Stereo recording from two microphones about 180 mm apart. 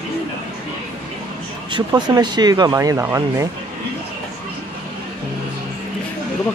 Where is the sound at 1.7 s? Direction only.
25° right (ahead or behind).